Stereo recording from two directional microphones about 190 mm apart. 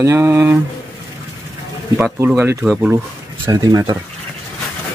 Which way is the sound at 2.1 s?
15° right (ahead or behind).